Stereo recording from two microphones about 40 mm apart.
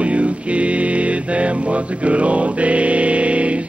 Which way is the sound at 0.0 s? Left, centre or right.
Right.